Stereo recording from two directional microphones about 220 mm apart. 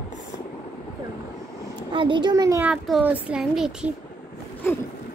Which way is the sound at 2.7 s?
5° right (ahead or behind).